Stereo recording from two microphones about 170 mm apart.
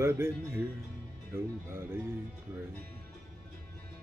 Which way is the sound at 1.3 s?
15° right (ahead or behind).